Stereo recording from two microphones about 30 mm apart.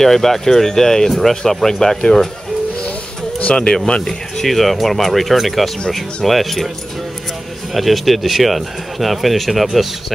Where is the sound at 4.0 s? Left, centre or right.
Centre.